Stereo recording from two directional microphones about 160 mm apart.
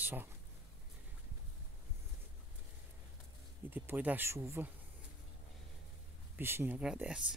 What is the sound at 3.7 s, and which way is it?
Speech, 10° right (ahead or behind).